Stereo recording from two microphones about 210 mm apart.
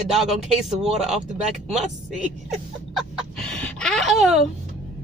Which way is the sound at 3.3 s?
5° left (ahead or behind).